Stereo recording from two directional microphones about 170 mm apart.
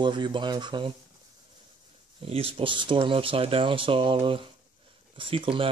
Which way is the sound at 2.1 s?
35° right (ahead or behind).